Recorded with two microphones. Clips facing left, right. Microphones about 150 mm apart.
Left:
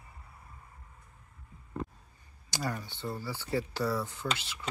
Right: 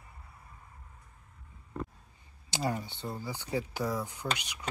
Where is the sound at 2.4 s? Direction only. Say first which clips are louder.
Right 3 dB; 20° right (ahead or behind).